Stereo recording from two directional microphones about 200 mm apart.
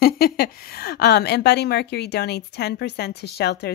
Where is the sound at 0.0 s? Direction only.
50° left (ahead or behind).